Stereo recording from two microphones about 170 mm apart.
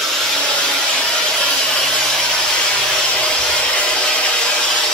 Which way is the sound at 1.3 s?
5° left (ahead or behind).